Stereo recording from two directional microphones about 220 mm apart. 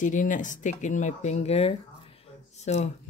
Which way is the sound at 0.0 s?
35° left (ahead or behind).